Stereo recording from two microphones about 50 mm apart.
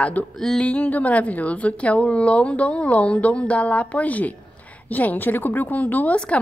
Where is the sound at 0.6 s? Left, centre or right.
Left.